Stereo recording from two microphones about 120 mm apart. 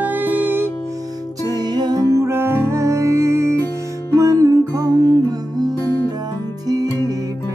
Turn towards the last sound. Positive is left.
turn(degrees=-35)  # may be behind; listen again after turning